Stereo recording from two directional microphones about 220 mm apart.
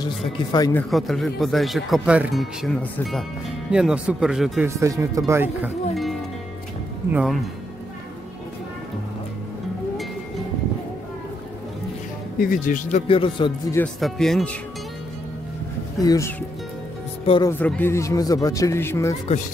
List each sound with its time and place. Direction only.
0.7 s speech: centre (ahead or behind)
4.6 s speech: 15° right (ahead or behind)
12.4 s speech: 40° left (ahead or behind); by 13.7 s 20° left (ahead or behind)
13.7 s speech: centre (ahead or behind)
16.0 s a man's voice: 15° left (ahead or behind)
17.2 s speech: 25° left (ahead or behind)
17.5 s a man's voice: 10° left (ahead or behind)